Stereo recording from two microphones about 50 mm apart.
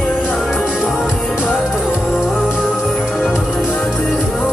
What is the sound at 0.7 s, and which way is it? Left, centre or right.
Music, centre.